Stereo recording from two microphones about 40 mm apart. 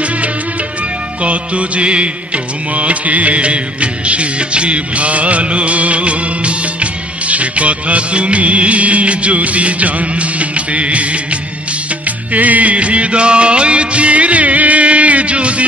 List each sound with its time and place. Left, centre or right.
1.2 s music: right
12.3 s music: right